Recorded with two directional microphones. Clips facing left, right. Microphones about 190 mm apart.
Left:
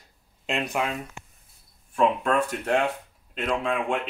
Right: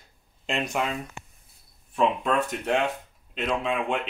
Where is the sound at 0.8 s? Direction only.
5° left (ahead or behind).